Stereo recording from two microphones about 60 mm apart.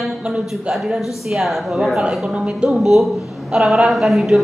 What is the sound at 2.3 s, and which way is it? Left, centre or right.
Speech, centre.